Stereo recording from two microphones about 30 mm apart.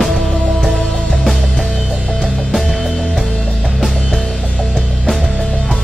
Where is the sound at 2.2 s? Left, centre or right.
Centre.